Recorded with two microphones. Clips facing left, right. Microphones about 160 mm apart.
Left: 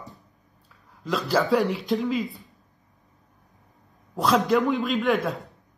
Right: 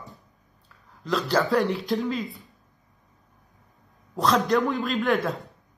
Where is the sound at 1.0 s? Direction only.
Centre (ahead or behind).